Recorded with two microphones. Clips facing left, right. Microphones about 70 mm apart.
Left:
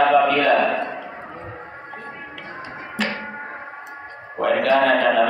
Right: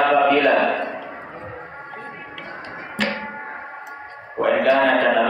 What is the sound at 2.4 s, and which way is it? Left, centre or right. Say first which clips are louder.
Music: right 1 dB; centre.